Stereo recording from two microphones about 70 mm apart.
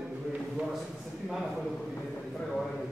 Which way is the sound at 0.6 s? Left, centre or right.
Centre.